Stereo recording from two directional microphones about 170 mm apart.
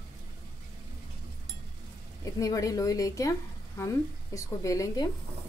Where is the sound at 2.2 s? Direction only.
20° left (ahead or behind).